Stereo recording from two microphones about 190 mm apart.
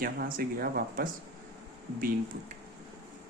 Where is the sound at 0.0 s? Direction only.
50° right (ahead or behind).